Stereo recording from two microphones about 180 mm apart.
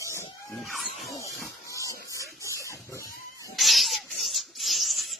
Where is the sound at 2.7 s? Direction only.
15° left (ahead or behind).